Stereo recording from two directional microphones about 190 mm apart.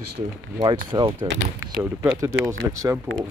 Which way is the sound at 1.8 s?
10° right (ahead or behind).